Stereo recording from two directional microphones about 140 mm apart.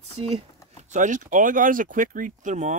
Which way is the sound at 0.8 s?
65° right (ahead or behind).